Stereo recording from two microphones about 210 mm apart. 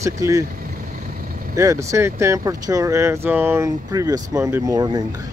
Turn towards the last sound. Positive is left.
turn(degrees=-15)  # may be behind; listen again after turning